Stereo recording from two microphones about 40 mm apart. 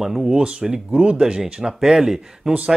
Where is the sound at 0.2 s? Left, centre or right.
Right.